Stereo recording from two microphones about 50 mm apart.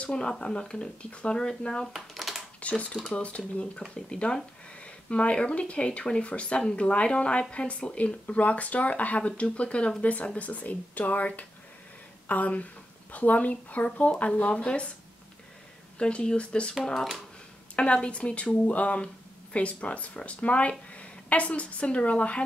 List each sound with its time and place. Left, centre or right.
0.0 s speech: centre
1.9 s a sound: centre
2.6 s speech: left
16.0 s speech: centre
16.8 s speech: centre
17.7 s speech: left